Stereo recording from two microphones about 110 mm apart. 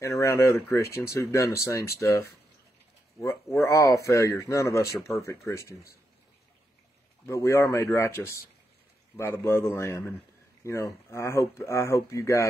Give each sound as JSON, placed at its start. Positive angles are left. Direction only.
{"t": 0.0, "sound": "a man's voice", "side_deg": 25}
{"t": 3.5, "sound": "a man's voice", "side_deg": 25}
{"t": 7.2, "sound": "a man's voice", "side_deg": 25}